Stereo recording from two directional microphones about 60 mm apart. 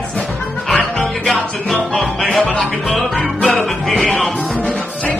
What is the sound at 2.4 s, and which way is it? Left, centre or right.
Music, centre.